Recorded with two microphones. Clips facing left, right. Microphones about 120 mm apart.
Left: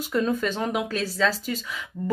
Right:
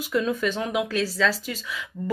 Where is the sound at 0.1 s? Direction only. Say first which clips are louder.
Even; 40° left (ahead or behind).